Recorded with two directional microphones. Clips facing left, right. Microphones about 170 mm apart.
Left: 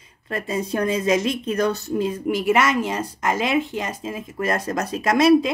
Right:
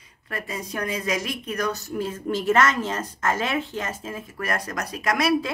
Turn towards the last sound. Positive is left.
turn(degrees=25)  # may be behind; listen again after turning